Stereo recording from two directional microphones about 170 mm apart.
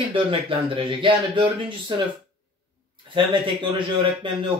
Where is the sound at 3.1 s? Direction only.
30° right (ahead or behind).